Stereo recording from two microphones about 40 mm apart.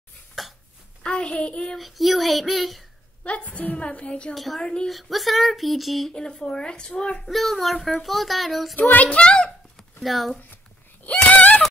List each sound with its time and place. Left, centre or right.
0.4 s a sound: centre
1.0 s child singing: left
1.8 s speech: centre
3.5 s a woman's voice: left
4.4 s speech: centre
6.1 s a woman's voice: centre
7.2 s speech: centre
8.7 s a child's voice: left
9.1 s a woman's voice: left
10.0 s speech: centre
11.2 s a sound: left